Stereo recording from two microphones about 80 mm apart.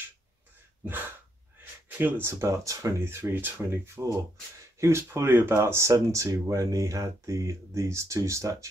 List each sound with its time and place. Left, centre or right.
0.8 s speech: right